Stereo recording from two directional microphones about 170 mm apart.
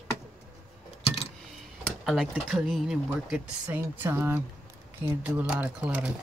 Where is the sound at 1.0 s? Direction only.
35° left (ahead or behind).